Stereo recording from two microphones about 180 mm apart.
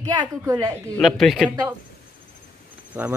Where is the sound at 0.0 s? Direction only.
20° right (ahead or behind).